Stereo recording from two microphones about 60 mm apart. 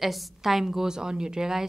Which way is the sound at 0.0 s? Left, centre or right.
Centre.